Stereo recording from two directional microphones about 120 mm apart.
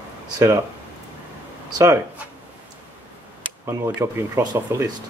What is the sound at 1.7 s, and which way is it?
Speech, 30° right (ahead or behind).